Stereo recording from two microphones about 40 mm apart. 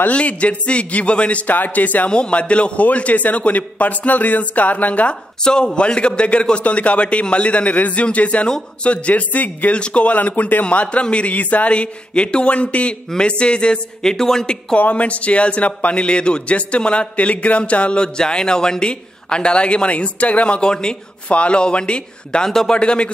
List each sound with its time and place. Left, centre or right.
0.1 s a man's voice: left
1.5 s speech: left
2.0 s a man's voice: left
5.4 s a man's voice: centre; by 9.8 s left
9.8 s speech: left
10.1 s a man's voice: left
14.1 s speech: centre
14.8 s speech: left
22.4 s speech: centre
22.8 s speech: left